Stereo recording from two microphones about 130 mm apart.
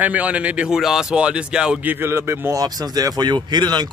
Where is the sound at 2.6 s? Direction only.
30° right (ahead or behind).